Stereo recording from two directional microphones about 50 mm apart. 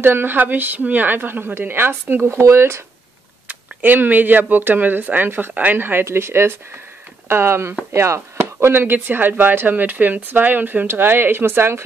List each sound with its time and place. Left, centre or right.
0.0 s speech: right
2.2 s speech: right
3.4 s speech: right
6.0 s speech: right